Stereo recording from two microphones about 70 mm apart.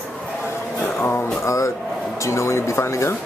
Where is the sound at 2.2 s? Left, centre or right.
Left.